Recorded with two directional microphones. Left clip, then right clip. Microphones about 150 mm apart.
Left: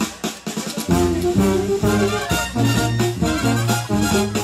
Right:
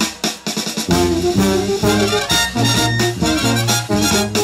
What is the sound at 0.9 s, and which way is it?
Music, 30° right (ahead or behind).